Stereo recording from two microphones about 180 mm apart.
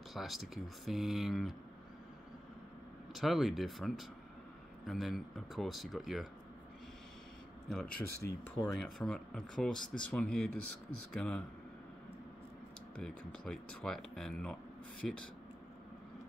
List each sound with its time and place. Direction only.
0.1 s speech: centre (ahead or behind)
3.2 s speech: centre (ahead or behind)
7.7 s speech: 5° left (ahead or behind)
8.2 s speech: 15° left (ahead or behind)
8.7 s speech: centre (ahead or behind)
12.9 s speech: 5° left (ahead or behind)